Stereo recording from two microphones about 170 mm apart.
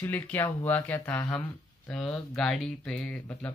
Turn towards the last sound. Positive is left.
turn(degrees=5)  # may be behind; listen again after turning